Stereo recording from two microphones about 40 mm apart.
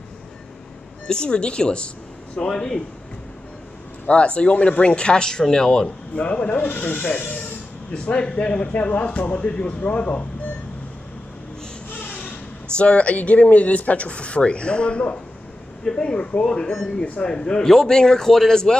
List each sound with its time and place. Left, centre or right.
1.0 s a man's voice: left
4.1 s a man's voice: left
6.1 s speech: left
12.7 s a man's voice: left; by 18.6 s centre